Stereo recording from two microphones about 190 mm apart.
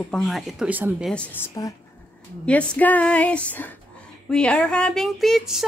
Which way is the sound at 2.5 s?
5° left (ahead or behind).